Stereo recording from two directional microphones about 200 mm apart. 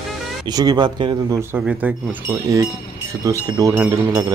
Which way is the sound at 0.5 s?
20° right (ahead or behind).